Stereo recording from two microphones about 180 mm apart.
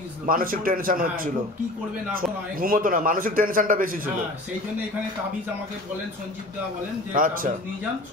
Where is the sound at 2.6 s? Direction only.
50° right (ahead or behind).